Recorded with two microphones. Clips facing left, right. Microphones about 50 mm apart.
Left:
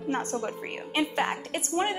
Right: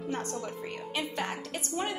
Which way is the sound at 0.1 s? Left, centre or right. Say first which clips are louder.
Left 6 dB; left.